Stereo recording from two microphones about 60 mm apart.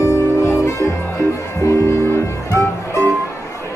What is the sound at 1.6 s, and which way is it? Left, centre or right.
Music, left.